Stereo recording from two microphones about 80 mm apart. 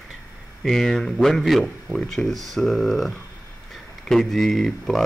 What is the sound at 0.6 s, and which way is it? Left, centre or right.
Speech, centre.